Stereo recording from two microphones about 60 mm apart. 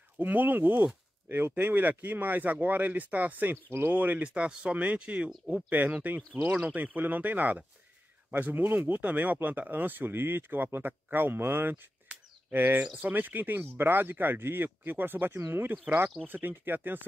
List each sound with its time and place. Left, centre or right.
0.2 s speech: right
4.3 s speech: centre; by 11.7 s right
12.1 s a sound: right
12.5 s speech: right